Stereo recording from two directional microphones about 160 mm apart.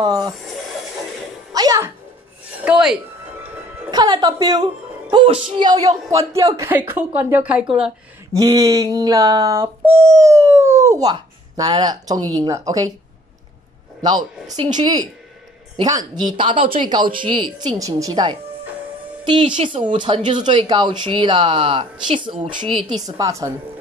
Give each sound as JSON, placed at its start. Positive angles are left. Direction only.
{"t": 0.0, "sound": "speech", "side_deg": -25}
{"t": 1.5, "sound": "music", "side_deg": -25}
{"t": 2.6, "sound": "speech", "side_deg": -5}
{"t": 3.9, "sound": "speech", "side_deg": -25}
{"t": 8.3, "sound": "a sound", "side_deg": -25}
{"t": 14.6, "sound": "speech", "side_deg": -25}
{"t": 23.0, "sound": "speech", "side_deg": -20}